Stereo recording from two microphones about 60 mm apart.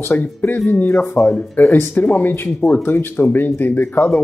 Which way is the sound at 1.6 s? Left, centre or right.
Left.